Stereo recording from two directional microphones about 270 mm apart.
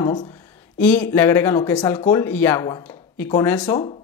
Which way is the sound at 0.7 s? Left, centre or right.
Centre.